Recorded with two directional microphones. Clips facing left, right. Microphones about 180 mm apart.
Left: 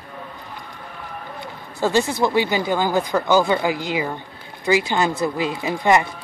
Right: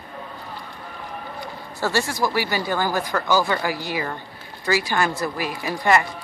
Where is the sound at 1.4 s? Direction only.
20° left (ahead or behind).